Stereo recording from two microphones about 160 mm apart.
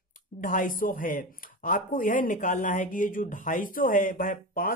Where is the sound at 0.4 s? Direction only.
55° left (ahead or behind).